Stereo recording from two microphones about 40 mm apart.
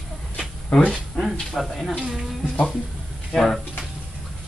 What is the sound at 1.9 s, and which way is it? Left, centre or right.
Speech, centre.